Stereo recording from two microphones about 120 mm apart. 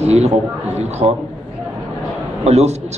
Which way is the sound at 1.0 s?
50° right (ahead or behind).